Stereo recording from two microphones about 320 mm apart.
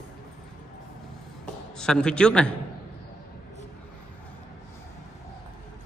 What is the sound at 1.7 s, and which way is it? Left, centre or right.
Speech, centre.